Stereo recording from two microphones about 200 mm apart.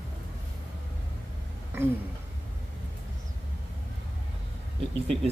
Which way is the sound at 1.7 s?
10° right (ahead or behind).